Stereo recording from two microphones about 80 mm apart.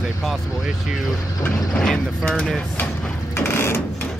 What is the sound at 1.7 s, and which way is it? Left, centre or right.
Speech, centre.